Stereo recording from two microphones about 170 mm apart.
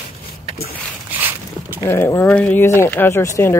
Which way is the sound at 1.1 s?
10° right (ahead or behind).